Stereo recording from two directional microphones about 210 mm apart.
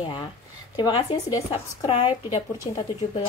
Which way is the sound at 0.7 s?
20° left (ahead or behind).